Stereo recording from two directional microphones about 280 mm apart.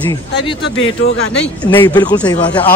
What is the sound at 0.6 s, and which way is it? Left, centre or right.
Speech, left.